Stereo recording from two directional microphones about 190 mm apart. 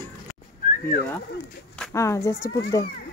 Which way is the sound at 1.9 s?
15° left (ahead or behind).